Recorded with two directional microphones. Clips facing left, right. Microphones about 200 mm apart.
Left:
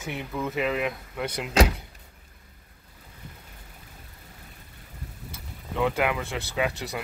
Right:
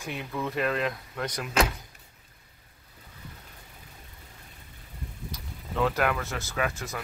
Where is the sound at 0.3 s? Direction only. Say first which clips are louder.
Left 1 dB; 5° left (ahead or behind).